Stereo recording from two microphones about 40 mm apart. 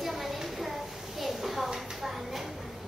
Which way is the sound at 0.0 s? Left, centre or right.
Centre.